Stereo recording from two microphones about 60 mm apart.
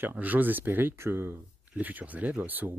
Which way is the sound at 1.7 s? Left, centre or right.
Right.